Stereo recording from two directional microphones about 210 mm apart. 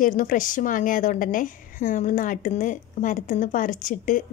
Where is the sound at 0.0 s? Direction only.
40° left (ahead or behind).